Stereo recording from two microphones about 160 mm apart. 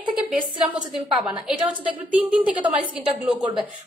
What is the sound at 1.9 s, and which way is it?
A woman's voice, 10° right (ahead or behind).